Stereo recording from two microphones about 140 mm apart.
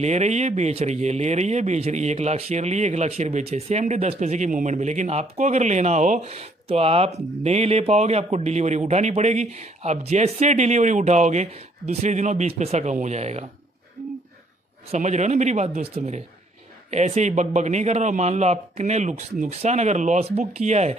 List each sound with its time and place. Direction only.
0.0 s speech: 55° right (ahead or behind)
14.9 s a man's voice: 55° right (ahead or behind)